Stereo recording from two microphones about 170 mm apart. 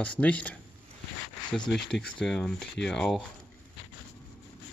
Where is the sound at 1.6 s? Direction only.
85° left.